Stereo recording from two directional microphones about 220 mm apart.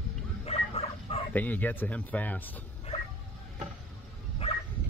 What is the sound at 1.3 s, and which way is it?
Speech, 5° left (ahead or behind).